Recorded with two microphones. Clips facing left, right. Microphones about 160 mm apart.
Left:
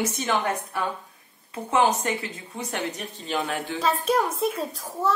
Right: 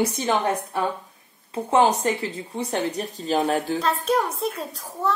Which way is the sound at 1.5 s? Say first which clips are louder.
Right 3 dB; 30° right (ahead or behind).